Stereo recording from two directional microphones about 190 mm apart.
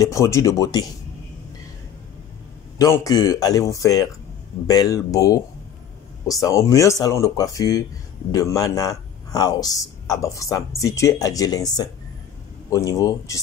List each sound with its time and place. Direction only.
0.0 s speech: 15° left (ahead or behind)
2.8 s a man's voice: 20° left (ahead or behind)
6.4 s a man's voice: 15° left (ahead or behind)